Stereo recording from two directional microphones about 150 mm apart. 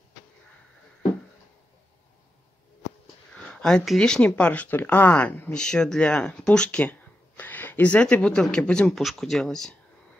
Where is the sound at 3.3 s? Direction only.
5° left (ahead or behind).